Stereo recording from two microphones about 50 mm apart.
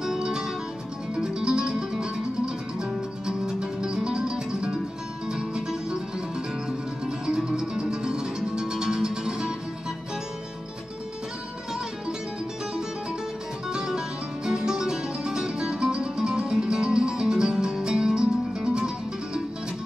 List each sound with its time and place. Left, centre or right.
0.0 s music: centre
13.7 s music: centre